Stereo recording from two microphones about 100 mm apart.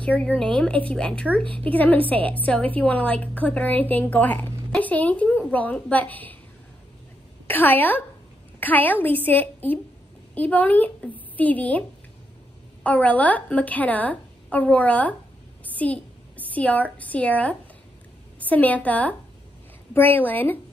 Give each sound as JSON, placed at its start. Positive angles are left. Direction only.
{"t": 0.0, "sound": "a woman's voice", "side_deg": 10}
{"t": 7.4, "sound": "a woman's voice", "side_deg": 20}
{"t": 12.8, "sound": "a woman's voice", "side_deg": 15}